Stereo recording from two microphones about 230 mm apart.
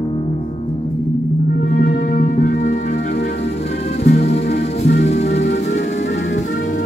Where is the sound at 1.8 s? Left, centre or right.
Left.